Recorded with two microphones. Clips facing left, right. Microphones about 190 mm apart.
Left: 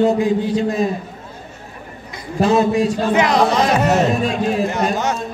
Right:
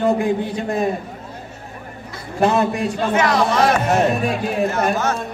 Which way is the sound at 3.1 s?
20° left (ahead or behind).